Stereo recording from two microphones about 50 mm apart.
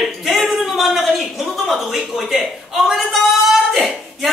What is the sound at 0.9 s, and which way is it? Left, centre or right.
Speech, centre.